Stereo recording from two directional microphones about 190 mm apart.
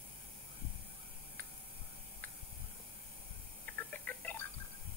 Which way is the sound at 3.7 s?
10° left (ahead or behind).